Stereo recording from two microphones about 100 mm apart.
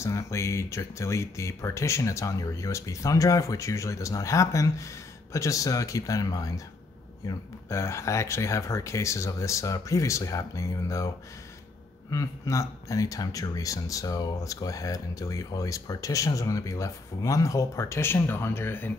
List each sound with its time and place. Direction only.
0.0 s speech: 30° left (ahead or behind)
12.1 s speech: 35° left (ahead or behind)